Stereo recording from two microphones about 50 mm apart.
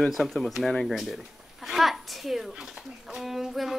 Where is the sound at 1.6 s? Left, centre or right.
Centre.